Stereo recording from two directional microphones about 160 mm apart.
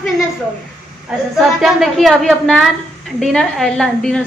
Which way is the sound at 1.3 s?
Centre (ahead or behind).